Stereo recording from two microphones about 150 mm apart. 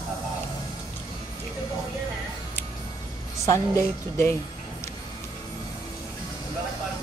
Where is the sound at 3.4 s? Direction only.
20° left (ahead or behind).